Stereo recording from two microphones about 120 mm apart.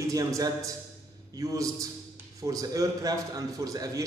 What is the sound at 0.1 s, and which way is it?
A man's voice, 30° right (ahead or behind).